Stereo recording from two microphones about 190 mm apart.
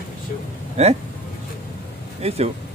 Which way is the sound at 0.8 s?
35° right (ahead or behind).